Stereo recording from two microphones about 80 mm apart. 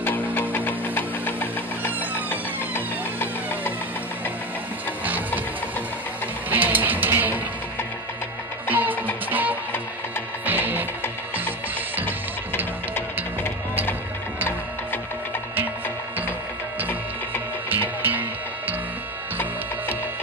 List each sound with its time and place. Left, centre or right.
0.3 s music: left
1.8 s music: right
2.2 s music: left
5.0 s music: right
6.5 s music: right
8.6 s music: right
17.6 s music: right